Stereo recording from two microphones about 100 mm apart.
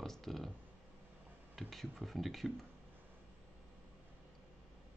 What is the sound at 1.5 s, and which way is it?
Speech, centre (ahead or behind).